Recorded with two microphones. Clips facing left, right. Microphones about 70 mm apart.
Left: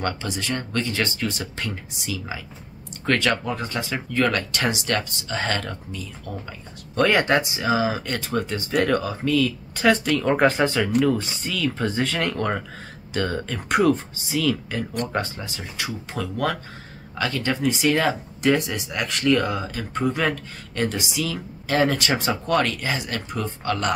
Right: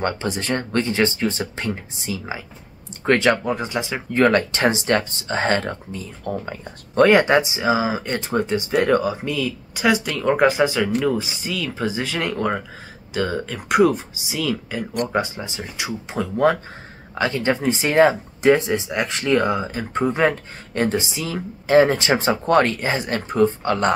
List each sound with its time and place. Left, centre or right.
0.0 s speech: right
0.9 s speech: right
4.1 s speech: right
7.1 s speech: centre